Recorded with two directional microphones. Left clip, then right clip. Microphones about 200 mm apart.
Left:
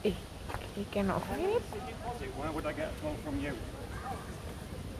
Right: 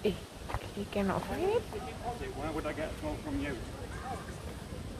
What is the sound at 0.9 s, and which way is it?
Speech, 5° left (ahead or behind).